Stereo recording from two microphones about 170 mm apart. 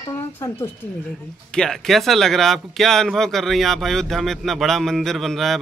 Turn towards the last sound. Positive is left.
turn(degrees=0)  # may be behind; listen again after turning